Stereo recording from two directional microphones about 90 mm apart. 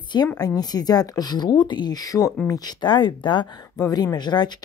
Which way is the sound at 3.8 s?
45° left (ahead or behind).